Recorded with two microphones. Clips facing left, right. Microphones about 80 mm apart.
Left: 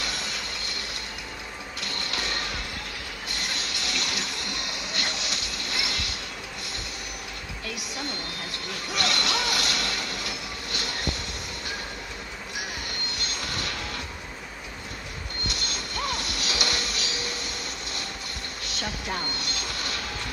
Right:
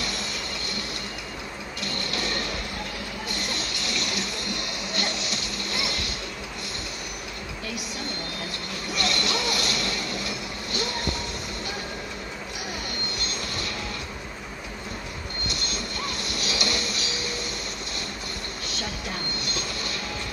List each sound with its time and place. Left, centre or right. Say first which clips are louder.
1.8 s music: right 2 dB; right
3.8 s music: right 1 dB; right
8.9 s vehicle: even; right
15.4 s music: right 1 dB; right